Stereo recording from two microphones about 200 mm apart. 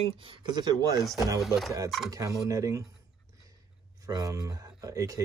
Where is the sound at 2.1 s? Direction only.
15° right (ahead or behind).